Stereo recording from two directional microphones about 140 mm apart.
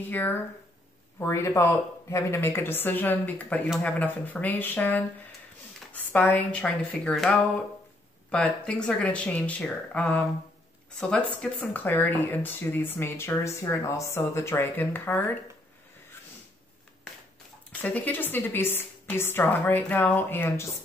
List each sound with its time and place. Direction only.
0.1 s speech: 15° left (ahead or behind)
17.8 s speech: 10° left (ahead or behind)